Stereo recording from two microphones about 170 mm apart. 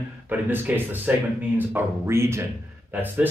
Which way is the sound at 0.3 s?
10° right (ahead or behind).